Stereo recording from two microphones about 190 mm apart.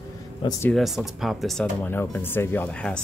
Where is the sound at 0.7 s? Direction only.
Centre (ahead or behind).